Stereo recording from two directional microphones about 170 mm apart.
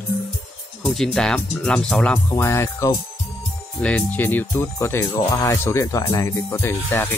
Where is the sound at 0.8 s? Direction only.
Centre (ahead or behind).